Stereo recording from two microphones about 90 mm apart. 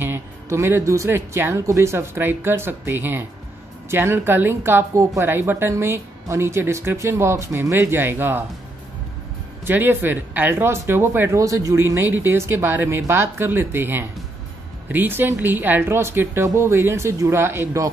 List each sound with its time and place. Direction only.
0.0 s speech: 30° right (ahead or behind)
9.7 s speech: 25° right (ahead or behind)